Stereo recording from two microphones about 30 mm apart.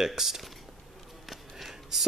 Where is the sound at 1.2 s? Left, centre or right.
Centre.